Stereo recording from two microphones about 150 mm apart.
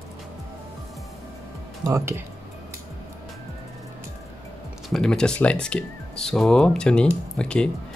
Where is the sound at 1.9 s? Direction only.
20° right (ahead or behind).